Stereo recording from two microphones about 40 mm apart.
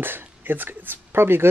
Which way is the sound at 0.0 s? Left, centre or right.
Right.